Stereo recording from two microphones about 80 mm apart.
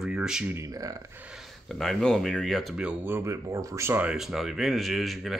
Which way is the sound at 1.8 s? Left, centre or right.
Centre.